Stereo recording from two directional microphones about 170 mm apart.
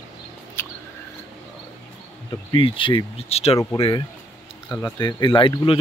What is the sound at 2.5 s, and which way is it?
Speech, 30° left (ahead or behind).